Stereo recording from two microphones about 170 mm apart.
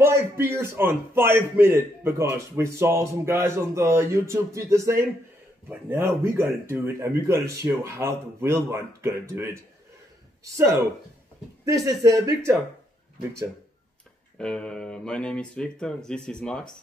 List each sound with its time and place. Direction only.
0.0 s a man's voice: 15° right (ahead or behind)
11.6 s speech: 20° right (ahead or behind)
14.4 s speech: 5° left (ahead or behind)